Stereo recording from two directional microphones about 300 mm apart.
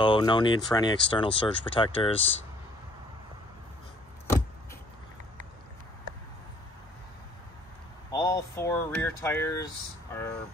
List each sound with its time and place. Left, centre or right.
0.0 s speech: centre
8.1 s vehicle: centre